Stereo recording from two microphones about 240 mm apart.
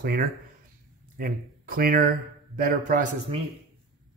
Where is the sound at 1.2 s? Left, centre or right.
Right.